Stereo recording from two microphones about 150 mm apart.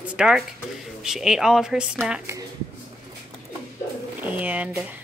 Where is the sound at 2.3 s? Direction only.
20° right (ahead or behind).